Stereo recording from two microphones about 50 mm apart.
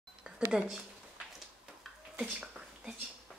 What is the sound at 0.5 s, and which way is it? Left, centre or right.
Speech, centre.